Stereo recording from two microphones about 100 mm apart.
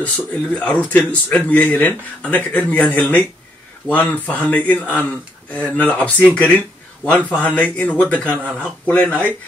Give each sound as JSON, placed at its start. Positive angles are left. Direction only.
{"t": 0.0, "sound": "speech", "side_deg": 15}